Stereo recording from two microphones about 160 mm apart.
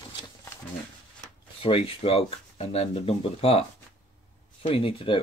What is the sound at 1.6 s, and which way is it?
Speech, 35° left (ahead or behind).